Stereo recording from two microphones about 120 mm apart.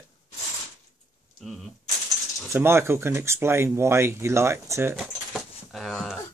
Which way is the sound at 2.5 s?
20° right (ahead or behind).